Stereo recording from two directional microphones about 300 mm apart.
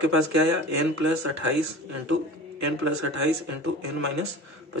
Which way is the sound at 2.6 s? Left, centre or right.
Right.